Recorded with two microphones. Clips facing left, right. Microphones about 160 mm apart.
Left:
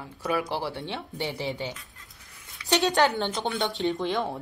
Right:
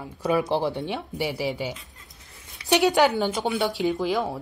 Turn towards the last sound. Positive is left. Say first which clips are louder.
# right 3 dB
turn(degrees=-5)  # may be behind; listen again after turning